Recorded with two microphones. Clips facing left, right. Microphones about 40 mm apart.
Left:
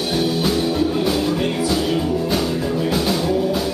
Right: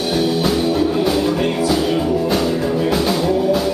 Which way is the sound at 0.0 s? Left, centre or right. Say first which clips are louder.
Right 2 dB; centre.